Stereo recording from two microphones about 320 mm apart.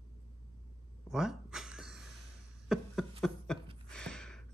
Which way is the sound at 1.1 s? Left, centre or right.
Centre.